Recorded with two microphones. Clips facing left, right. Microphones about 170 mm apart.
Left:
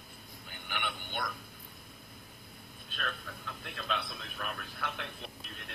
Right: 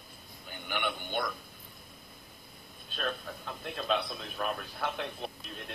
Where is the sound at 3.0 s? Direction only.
30° right (ahead or behind).